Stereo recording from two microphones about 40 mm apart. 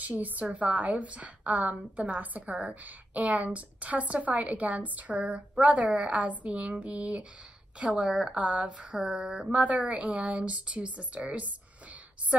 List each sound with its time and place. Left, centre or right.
0.0 s a woman's voice: right
8.1 s speech: centre
8.4 s speech: right
9.5 s a woman's voice: right